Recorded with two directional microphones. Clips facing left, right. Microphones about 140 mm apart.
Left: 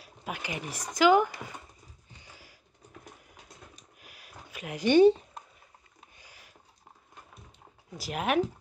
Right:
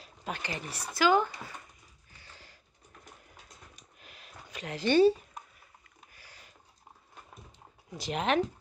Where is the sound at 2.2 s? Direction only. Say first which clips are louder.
Even; 10° left (ahead or behind).